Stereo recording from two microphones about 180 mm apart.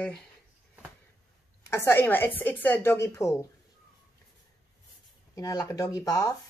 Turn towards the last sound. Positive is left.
turn(degrees=20)  # may be behind; listen again after turning